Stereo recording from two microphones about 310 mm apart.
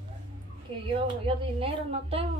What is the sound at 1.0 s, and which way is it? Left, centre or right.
A woman's voice, centre.